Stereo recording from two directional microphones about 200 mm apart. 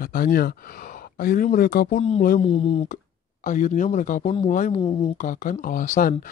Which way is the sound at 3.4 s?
40° left (ahead or behind).